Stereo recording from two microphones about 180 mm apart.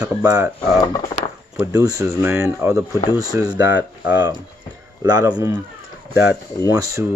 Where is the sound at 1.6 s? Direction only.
20° right (ahead or behind).